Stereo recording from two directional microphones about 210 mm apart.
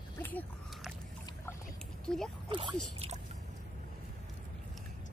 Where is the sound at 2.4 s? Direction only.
25° right (ahead or behind).